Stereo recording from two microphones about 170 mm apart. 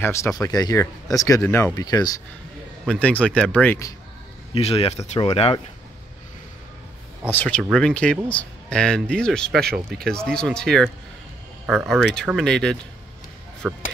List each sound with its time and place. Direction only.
0.0 s speech: 15° left (ahead or behind)
2.9 s speech: 10° left (ahead or behind)
4.6 s speech: 35° left (ahead or behind)
7.2 s speech: 10° left (ahead or behind)